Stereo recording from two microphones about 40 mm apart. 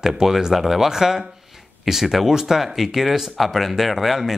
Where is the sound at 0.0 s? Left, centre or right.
Centre.